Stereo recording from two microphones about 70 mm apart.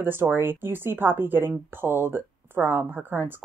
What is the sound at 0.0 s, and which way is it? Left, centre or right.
Speech, right.